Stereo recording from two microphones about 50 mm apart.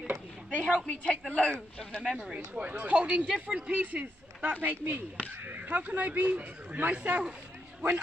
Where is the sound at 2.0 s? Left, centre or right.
Centre.